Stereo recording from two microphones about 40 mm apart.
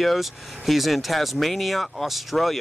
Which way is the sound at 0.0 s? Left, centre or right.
Centre.